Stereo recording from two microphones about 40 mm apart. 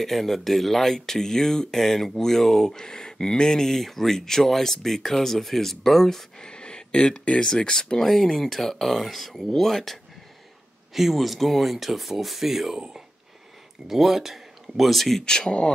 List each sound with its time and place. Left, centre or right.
0.0 s speech: centre; by 3.4 s left
3.4 s speech: centre
6.4 s a sound: left
7.3 s speech: centre
8.4 s speech: centre
10.9 s speech: centre
13.8 s speech: centre
15.2 s speech: centre